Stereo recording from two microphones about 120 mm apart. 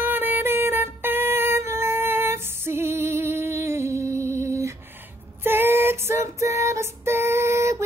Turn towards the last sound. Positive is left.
turn(degrees=-25)  # may be behind; listen again after turning